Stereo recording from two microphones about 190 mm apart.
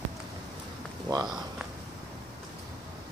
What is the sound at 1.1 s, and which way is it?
Speech, 20° right (ahead or behind).